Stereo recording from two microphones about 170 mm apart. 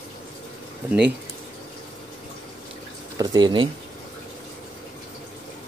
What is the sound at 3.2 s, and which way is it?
Speech, 25° right (ahead or behind).